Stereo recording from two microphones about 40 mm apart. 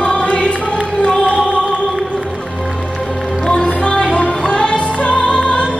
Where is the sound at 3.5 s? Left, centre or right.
Left.